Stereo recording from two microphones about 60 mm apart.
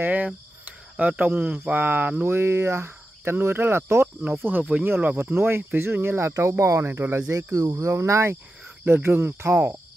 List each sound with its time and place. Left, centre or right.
0.0 s speech: right
2.2 s speech: right
4.5 s speech: right
7.5 s speech: right